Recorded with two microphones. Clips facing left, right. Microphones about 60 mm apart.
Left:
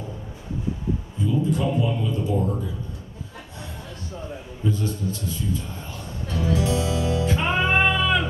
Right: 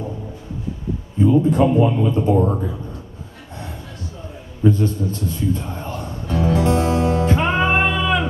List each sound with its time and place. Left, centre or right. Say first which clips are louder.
1.2 s speech: right 9 dB; right
4.6 s music: right 8 dB; right
7.8 s a sound: right 2 dB; centre